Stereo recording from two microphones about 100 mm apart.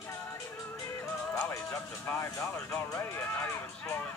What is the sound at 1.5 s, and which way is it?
Speech, 30° left (ahead or behind).